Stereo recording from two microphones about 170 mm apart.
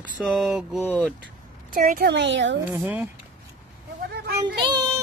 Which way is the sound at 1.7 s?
55° right (ahead or behind).